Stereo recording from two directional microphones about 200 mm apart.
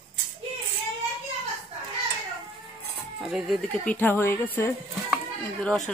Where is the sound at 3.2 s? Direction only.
Centre (ahead or behind).